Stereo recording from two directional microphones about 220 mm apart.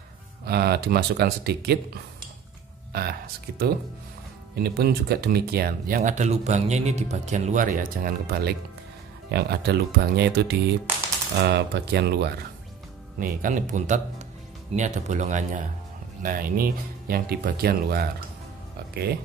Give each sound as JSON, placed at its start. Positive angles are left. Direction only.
{"t": 0.5, "sound": "speech", "side_deg": -45}
{"t": 2.9, "sound": "speech", "side_deg": -45}
{"t": 13.2, "sound": "speech", "side_deg": -35}